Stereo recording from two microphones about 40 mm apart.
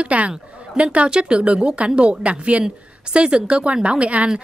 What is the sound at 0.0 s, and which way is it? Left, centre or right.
A woman's voice, right.